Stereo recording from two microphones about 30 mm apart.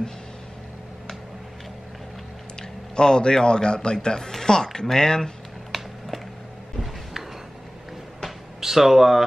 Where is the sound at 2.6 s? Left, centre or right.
Left.